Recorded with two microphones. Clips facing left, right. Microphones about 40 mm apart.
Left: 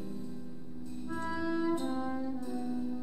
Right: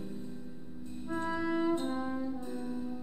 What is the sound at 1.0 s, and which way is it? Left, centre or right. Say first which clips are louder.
Music: right 2 dB; right.